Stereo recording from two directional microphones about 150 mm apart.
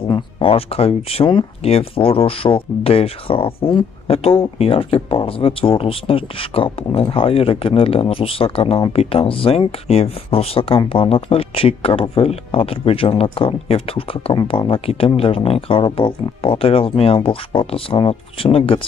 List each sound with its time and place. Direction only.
0.0 s speech: 35° left (ahead or behind)